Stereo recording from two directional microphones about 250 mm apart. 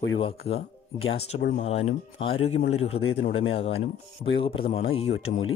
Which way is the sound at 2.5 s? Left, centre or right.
Left.